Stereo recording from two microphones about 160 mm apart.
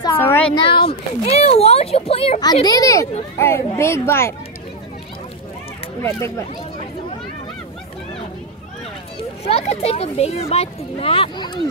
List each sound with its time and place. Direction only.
0.2 s a sound: 10° left (ahead or behind)
0.6 s speech: 35° left (ahead or behind)
2.4 s speech: 25° left (ahead or behind)
6.0 s speech: 15° left (ahead or behind)
9.5 s speech: 40° left (ahead or behind)